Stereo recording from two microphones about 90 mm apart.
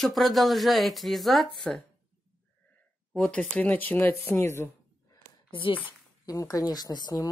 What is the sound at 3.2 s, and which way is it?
Speech, 10° left (ahead or behind).